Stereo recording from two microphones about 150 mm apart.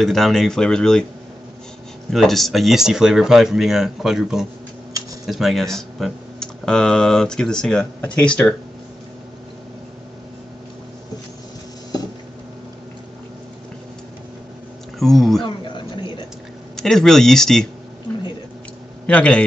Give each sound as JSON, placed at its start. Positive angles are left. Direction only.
{"t": 0.0, "sound": "speech", "side_deg": 0}
{"t": 2.0, "sound": "speech", "side_deg": 0}
{"t": 15.0, "sound": "speech", "side_deg": 0}
{"t": 15.4, "sound": "a sound", "side_deg": 30}
{"t": 16.7, "sound": "speech", "side_deg": 5}
{"t": 19.0, "sound": "a man's voice", "side_deg": 10}